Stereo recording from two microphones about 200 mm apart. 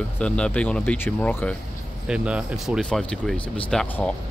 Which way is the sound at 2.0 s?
5° right (ahead or behind).